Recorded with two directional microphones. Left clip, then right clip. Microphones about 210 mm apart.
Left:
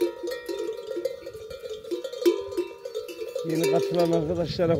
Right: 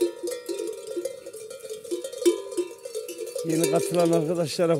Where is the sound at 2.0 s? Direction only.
15° left (ahead or behind).